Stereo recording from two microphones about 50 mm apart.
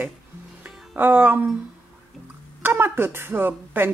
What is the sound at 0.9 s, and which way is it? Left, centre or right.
Speech, right.